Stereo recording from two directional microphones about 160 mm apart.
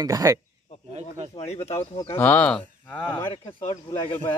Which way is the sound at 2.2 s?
10° left (ahead or behind).